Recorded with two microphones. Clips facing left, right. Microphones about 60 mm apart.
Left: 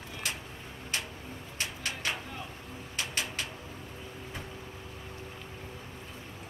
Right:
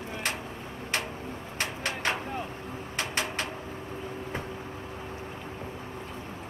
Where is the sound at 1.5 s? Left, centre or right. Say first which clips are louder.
Right 4 dB; right.